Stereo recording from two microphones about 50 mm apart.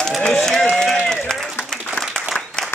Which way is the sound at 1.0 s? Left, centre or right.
Centre.